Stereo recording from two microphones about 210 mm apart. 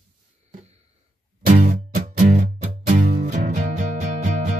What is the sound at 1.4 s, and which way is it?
Music, 40° right (ahead or behind).